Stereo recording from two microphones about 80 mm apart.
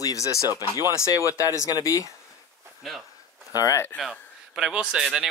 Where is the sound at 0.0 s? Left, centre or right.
Left.